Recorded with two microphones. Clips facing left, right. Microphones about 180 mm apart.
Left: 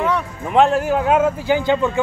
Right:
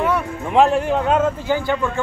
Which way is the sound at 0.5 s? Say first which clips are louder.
Even; centre (ahead or behind).